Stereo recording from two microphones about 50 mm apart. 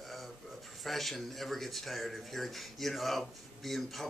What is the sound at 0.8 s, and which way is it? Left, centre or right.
Speech, centre.